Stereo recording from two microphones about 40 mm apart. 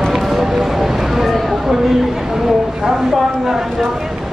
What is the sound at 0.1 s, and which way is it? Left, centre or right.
Music, centre.